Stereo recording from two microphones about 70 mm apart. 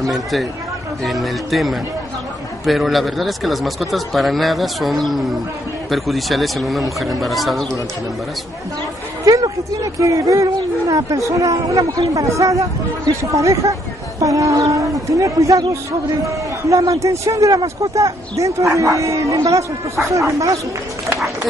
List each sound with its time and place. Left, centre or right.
0.1 s speech: centre
9.2 s speech: right